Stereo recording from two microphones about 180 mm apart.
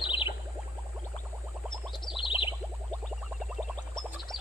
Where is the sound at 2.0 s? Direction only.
30° left (ahead or behind).